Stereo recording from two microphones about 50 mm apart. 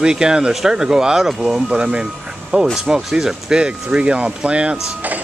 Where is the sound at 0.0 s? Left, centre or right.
Centre.